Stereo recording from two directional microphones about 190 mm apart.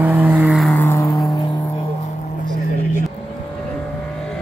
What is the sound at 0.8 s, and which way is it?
Vehicle, 15° left (ahead or behind).